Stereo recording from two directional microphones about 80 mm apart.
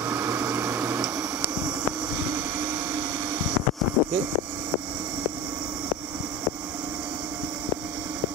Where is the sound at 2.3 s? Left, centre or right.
Right.